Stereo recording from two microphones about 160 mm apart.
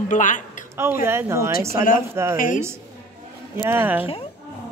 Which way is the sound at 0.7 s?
15° right (ahead or behind).